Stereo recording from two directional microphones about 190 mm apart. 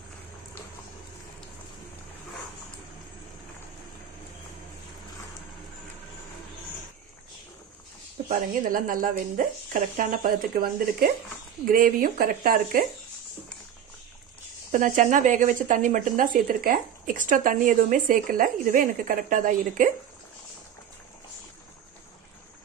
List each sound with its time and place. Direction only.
8.3 s speech: 45° right (ahead or behind)
14.7 s speech: 45° right (ahead or behind)